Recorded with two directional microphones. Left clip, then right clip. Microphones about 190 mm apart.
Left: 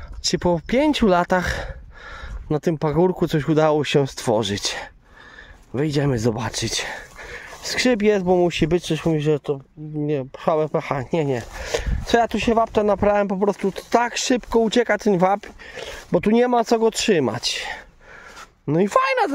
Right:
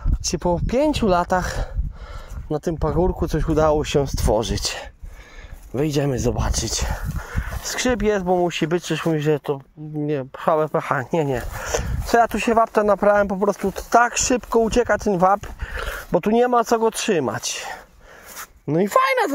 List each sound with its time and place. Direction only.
0.2 s speech: 30° left (ahead or behind)
7.2 s dog: 45° left (ahead or behind)
7.7 s speech: 30° left (ahead or behind)
18.7 s speech: 15° left (ahead or behind)